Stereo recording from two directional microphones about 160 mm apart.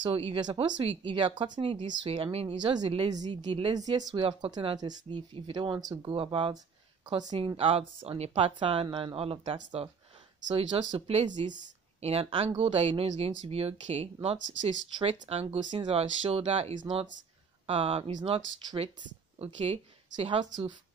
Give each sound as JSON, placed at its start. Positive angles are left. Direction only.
{"t": 0.0, "sound": "a woman's voice", "side_deg": -35}